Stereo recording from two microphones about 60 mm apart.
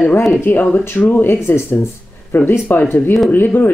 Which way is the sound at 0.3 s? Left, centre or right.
Left.